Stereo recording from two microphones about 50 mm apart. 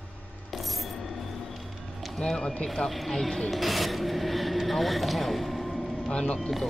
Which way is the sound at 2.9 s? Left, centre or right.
Centre.